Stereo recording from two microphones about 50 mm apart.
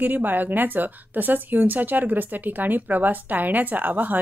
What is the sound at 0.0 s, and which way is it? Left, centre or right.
A woman's voice, right.